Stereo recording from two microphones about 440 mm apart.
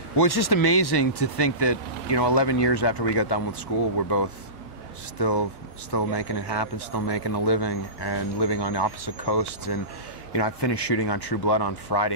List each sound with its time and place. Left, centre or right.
0.2 s a man's voice: left